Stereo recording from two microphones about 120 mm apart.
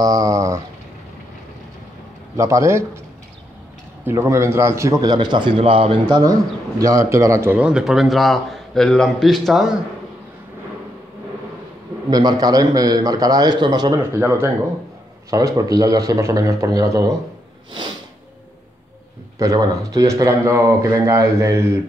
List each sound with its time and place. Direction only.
0.0 s a sound: 30° right (ahead or behind)
2.3 s speech: 25° right (ahead or behind)
4.0 s a man's voice: 20° right (ahead or behind); by 6.3 s 40° right (ahead or behind)
6.8 s speech: 30° right (ahead or behind)
7.5 s a man's voice: 5° right (ahead or behind)
12.1 s a man's voice: 35° right (ahead or behind)
14.1 s speech: 20° right (ahead or behind)
15.3 s speech: 30° right (ahead or behind)
19.3 s speech: 30° right (ahead or behind)